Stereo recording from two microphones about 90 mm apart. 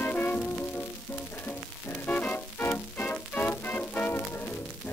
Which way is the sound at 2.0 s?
15° left (ahead or behind).